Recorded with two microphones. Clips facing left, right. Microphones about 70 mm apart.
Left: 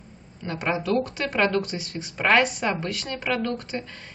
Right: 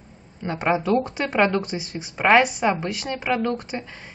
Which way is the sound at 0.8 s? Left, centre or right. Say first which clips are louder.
Right 3 dB; right.